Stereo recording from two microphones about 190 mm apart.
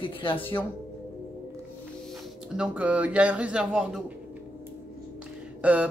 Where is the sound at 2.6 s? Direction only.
5° right (ahead or behind).